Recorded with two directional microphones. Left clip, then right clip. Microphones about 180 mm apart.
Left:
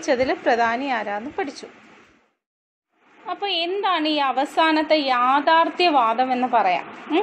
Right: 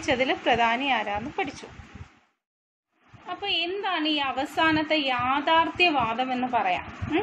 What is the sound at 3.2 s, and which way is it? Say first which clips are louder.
A woman's voice: left 4 dB; 15° left (ahead or behind).